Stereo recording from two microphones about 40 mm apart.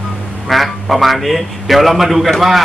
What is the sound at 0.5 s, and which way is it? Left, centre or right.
A man's voice, centre.